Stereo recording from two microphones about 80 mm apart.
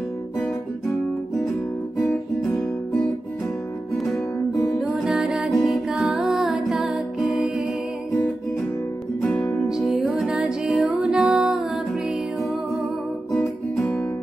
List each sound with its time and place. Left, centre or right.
4.7 s music: centre
9.2 s music: centre
9.8 s music: centre
13.7 s music: centre